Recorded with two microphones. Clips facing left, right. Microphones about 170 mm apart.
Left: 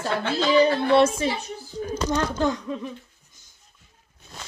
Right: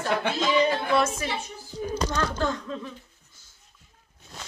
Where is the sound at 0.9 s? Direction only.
30° left (ahead or behind).